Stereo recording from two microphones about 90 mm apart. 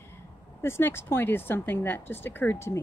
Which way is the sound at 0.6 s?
30° left (ahead or behind).